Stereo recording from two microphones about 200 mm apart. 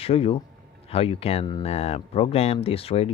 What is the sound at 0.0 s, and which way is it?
Speech, 30° left (ahead or behind).